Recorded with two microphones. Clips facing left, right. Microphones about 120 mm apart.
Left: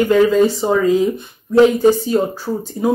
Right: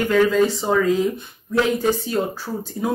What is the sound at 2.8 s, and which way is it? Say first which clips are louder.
Speech: left 6 dB; 5° left (ahead or behind).